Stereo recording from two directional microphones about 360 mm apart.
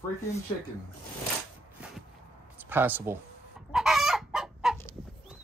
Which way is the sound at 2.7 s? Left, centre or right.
Centre.